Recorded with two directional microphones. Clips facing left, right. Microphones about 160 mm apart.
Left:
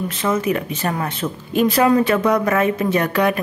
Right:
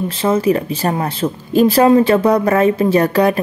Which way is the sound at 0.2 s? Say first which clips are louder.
Right 5 dB; 30° right (ahead or behind).